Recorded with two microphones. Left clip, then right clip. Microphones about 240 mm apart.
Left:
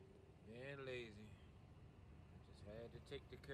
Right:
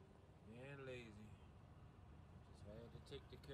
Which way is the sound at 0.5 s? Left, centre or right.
Centre.